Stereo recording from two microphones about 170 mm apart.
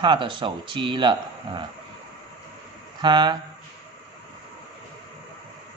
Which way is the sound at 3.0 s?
25° right (ahead or behind).